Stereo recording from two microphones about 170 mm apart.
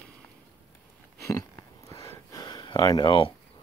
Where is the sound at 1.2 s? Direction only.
20° left (ahead or behind).